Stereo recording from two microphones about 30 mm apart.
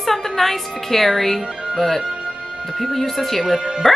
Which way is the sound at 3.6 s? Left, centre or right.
Right.